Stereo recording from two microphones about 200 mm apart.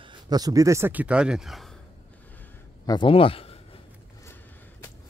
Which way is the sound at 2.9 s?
25° left (ahead or behind).